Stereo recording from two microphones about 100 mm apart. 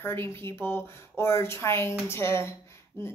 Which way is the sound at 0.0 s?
20° left (ahead or behind).